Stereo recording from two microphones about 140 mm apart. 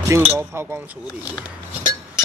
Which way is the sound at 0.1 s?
15° right (ahead or behind).